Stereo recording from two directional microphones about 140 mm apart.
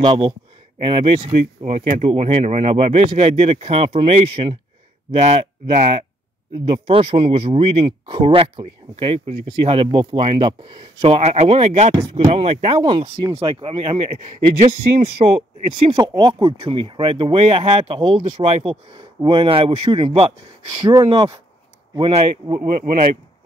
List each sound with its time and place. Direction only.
0.0 s speech: 30° right (ahead or behind)
5.1 s speech: 55° right (ahead or behind)
20.9 s speech: 30° right (ahead or behind)